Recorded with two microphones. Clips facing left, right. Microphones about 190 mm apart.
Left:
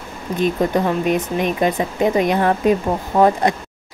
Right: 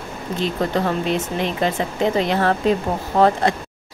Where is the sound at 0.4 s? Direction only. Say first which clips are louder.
Left 4 dB; 15° left (ahead or behind).